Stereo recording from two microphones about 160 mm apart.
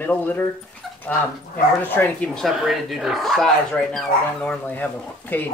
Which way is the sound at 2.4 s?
Centre (ahead or behind).